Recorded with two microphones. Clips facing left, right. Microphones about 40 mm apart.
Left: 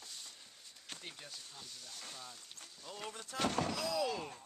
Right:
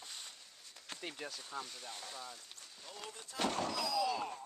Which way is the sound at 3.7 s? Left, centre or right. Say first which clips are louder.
Even; left.